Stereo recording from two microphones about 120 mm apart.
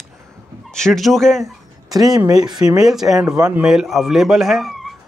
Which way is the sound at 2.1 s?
30° right (ahead or behind).